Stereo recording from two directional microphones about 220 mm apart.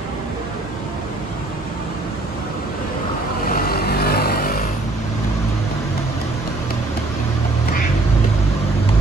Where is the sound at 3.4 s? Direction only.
40° left (ahead or behind).